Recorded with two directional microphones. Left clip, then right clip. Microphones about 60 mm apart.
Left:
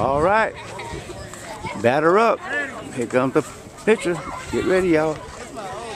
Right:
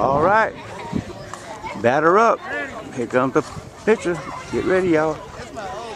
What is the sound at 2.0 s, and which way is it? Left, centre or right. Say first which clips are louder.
Speech: right 2 dB; right.